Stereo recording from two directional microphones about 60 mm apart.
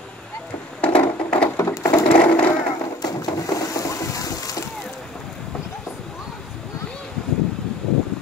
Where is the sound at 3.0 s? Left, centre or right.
Left.